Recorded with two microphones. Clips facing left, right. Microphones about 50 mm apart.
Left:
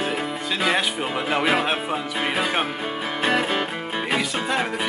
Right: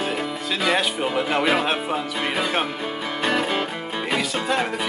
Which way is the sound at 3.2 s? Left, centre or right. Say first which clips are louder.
Left 1 dB; centre.